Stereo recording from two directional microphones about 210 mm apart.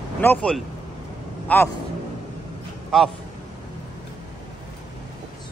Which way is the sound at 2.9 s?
Centre (ahead or behind).